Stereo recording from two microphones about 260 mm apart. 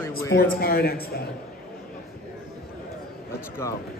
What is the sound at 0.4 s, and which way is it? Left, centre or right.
Speech, left.